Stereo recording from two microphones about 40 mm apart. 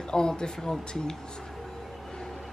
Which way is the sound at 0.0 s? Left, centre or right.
Centre.